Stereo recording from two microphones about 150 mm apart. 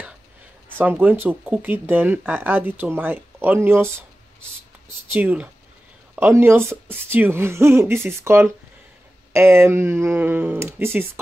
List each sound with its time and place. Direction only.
0.7 s speech: 15° right (ahead or behind)
5.1 s speech: 10° right (ahead or behind)